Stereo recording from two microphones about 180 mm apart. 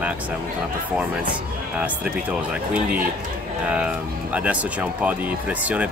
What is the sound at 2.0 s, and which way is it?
Speech, 5° right (ahead or behind).